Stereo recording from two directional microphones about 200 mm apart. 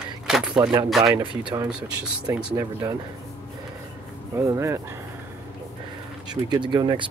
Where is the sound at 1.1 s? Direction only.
25° right (ahead or behind).